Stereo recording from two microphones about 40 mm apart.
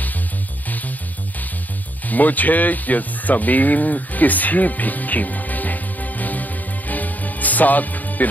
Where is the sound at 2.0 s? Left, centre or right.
Left.